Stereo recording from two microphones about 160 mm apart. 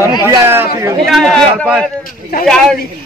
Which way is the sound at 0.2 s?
15° right (ahead or behind).